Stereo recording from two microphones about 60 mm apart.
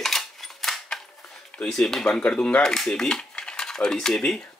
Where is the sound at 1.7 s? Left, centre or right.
Centre.